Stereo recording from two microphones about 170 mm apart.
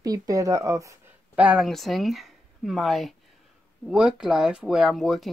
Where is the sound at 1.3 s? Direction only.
5° right (ahead or behind).